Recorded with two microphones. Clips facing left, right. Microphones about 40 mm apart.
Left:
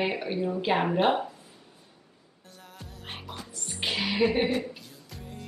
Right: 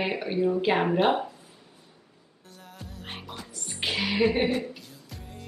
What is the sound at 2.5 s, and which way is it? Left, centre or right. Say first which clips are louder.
Music: right 2 dB; centre.